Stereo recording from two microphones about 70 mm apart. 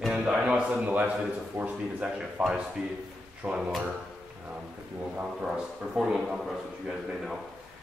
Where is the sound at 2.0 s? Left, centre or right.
Centre.